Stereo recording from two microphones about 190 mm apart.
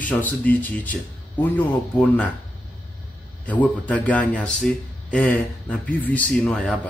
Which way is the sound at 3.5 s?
10° left (ahead or behind).